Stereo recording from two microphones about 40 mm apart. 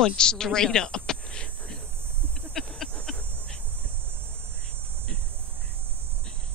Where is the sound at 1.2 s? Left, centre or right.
Left.